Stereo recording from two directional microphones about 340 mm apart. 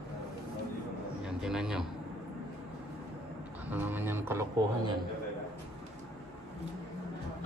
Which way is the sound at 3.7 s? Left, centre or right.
Centre.